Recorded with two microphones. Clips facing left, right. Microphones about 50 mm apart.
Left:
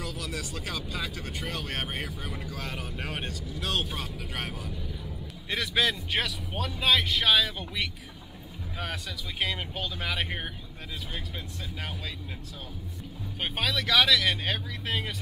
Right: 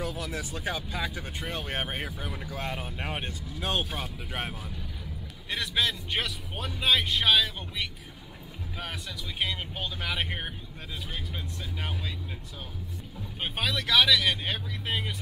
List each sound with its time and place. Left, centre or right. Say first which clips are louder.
0.0 s speech: right 2 dB; right
5.5 s speech: left 2 dB; centre
6.2 s speech: left 2 dB; centre
9.9 s speech: even; centre
13.4 s speech: left 1 dB; centre